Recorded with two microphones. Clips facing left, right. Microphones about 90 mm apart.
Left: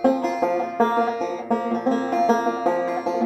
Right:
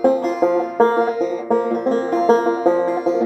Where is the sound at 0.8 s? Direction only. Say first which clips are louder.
Right 5 dB; 35° right (ahead or behind).